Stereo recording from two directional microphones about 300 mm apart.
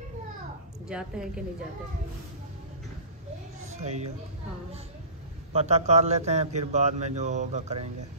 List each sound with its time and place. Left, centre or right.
0.8 s a woman's voice: centre
3.7 s speech: right
5.5 s speech: right